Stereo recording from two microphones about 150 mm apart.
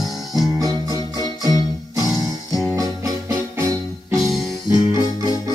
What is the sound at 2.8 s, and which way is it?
Music, 20° right (ahead or behind).